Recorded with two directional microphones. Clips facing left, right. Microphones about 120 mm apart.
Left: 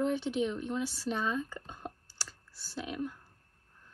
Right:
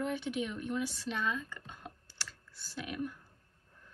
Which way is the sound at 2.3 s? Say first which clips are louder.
Right 1 dB; 5° left (ahead or behind).